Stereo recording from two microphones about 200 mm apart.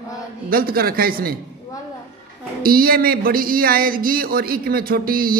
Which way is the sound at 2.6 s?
45° right (ahead or behind).